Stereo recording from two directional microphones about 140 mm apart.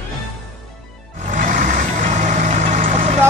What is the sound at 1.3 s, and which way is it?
Music, 65° right (ahead or behind).